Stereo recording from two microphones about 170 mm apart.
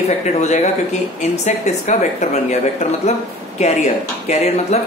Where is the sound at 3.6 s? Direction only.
40° left (ahead or behind).